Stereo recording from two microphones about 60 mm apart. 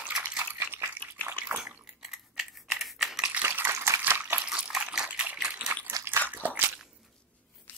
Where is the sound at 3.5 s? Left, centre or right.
Right.